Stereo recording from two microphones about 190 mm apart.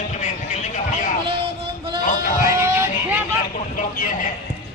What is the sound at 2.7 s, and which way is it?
Speech, 10° right (ahead or behind).